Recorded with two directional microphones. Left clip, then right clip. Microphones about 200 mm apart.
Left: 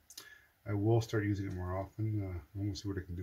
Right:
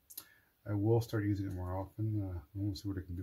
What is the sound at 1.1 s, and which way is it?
Speech, 35° right (ahead or behind).